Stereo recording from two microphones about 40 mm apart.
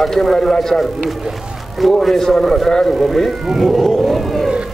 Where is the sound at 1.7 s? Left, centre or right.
Centre.